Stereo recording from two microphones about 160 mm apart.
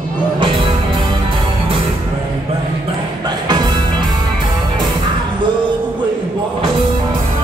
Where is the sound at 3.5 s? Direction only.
25° right (ahead or behind).